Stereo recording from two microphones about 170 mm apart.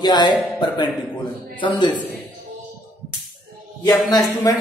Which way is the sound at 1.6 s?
25° left (ahead or behind).